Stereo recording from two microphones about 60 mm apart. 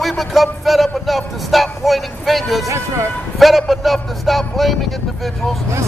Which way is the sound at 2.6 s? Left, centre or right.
Right.